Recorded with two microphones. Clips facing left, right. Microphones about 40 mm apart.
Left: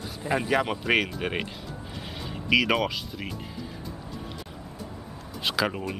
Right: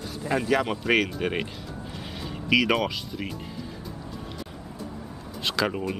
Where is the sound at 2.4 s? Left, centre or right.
Centre.